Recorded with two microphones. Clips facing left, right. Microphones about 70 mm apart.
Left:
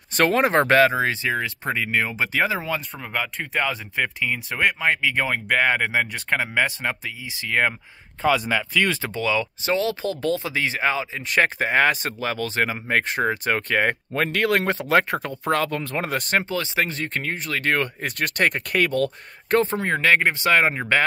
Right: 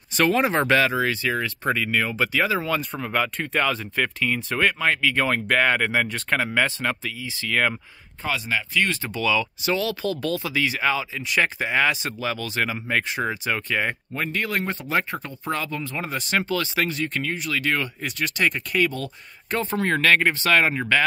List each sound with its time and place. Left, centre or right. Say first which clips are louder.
0.2 s speech: left 2 dB; left
0.9 s speech: left 1 dB; left
3.0 s speech: right 3 dB; centre
3.6 s speech: right 1 dB; centre
9.1 s speech: even; left
13.1 s speech: left 3 dB; left
16.3 s speech: right 1 dB; left
16.9 s speech: right 1 dB; left
19.8 s speech: even; centre